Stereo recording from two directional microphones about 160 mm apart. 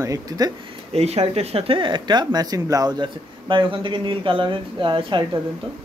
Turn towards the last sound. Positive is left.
turn(degrees=-30)  # may be behind; listen again after turning